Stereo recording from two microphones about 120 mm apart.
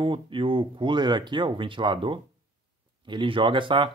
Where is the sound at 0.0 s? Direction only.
45° right (ahead or behind).